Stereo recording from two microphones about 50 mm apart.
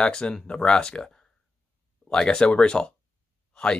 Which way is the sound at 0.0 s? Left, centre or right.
Centre.